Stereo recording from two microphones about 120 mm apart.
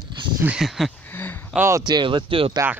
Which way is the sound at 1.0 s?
15° left (ahead or behind).